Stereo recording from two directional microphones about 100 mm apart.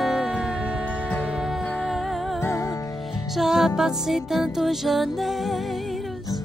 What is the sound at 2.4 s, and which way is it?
Music, 25° left (ahead or behind).